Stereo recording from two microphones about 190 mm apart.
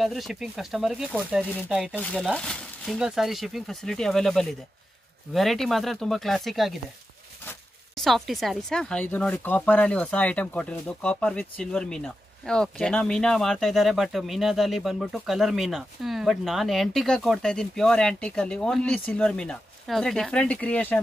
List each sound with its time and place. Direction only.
0.0 s speech: centre (ahead or behind)
7.9 s speech: centre (ahead or behind)